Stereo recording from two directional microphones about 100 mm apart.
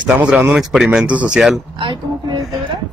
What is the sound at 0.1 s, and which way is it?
Speech, 15° right (ahead or behind).